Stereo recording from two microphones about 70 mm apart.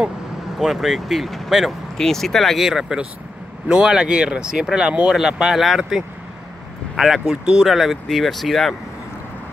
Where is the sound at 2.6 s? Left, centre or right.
Centre.